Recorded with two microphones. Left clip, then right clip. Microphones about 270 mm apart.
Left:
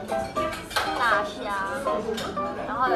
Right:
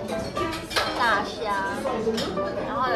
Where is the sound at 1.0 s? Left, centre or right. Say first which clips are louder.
Left 1 dB; centre.